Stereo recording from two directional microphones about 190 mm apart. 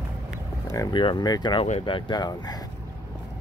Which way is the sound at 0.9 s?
25° left (ahead or behind).